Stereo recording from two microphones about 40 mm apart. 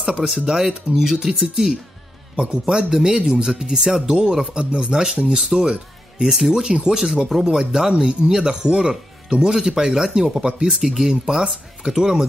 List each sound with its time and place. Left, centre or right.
0.3 s speech: centre
2.3 s a man's voice: right
2.9 s speech: centre